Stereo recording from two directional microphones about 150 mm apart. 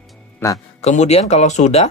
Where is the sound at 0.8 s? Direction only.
45° left (ahead or behind).